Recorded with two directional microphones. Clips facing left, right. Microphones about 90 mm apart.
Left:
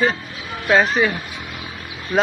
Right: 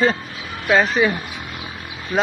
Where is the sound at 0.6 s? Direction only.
Centre (ahead or behind).